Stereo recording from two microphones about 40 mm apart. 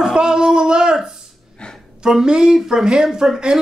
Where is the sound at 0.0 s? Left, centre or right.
Centre.